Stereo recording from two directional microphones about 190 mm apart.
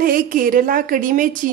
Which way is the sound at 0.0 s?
45° right (ahead or behind).